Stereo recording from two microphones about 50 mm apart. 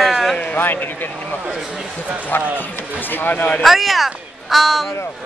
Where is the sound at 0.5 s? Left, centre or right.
Left.